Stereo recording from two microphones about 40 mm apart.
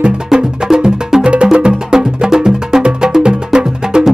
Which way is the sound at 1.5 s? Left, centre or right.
Centre.